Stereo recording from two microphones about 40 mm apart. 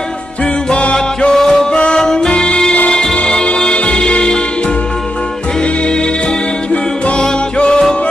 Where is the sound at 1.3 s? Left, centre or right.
Centre.